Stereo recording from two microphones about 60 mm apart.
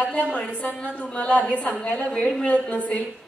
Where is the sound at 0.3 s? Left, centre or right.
Left.